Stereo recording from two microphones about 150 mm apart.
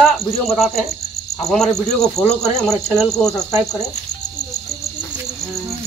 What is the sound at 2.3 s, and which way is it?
Cricket, 45° left (ahead or behind).